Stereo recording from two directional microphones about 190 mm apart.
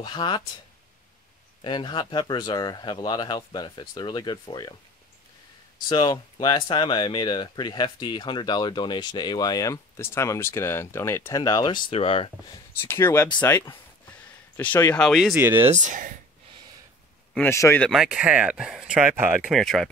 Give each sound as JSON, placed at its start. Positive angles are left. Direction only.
{"t": 0.0, "sound": "speech", "side_deg": 25}
{"t": 1.6, "sound": "speech", "side_deg": 25}
{"t": 5.9, "sound": "speech", "side_deg": 25}
{"t": 12.8, "sound": "speech", "side_deg": 15}
{"t": 15.3, "sound": "speech", "side_deg": -10}
{"t": 15.7, "sound": "speech", "side_deg": -40}
{"t": 17.3, "sound": "speech", "side_deg": 10}
{"t": 17.8, "sound": "speech", "side_deg": -5}